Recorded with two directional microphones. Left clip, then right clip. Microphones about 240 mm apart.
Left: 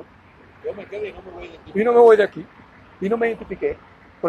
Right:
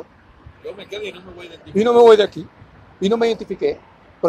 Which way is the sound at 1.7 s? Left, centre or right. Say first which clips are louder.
Right 2 dB; centre.